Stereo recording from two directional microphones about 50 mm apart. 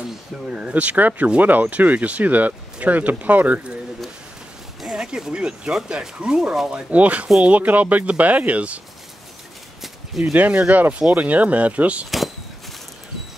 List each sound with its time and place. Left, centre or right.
0.5 s speech: right
4.8 s speech: centre
10.3 s speech: right